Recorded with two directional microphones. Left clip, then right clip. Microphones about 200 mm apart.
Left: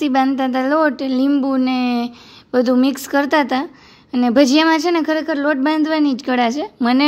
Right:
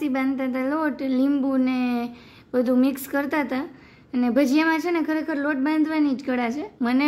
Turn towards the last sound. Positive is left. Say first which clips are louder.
# left 7 dB
turn(degrees=30)  # may be behind; listen again after turning